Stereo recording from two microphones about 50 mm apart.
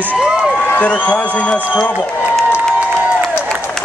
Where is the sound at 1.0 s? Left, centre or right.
Left.